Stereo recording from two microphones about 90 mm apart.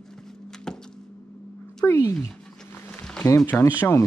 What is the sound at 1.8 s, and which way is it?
Speech, 35° left (ahead or behind).